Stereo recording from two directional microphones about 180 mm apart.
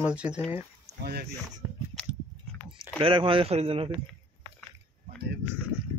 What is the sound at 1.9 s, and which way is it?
Biting, centre (ahead or behind).